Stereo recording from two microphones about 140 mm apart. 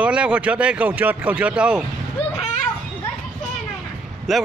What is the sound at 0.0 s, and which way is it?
Speech, 10° right (ahead or behind).